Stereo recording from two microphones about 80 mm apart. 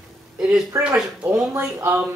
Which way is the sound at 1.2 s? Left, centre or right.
Right.